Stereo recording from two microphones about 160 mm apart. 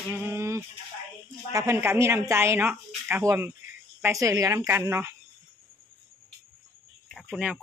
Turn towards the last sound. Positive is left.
turn(degrees=-5)  # may be behind; listen again after turning